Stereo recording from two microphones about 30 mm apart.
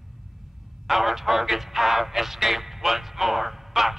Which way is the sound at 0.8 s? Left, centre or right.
Centre.